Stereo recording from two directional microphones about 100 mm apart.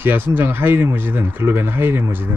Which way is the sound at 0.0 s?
20° right (ahead or behind).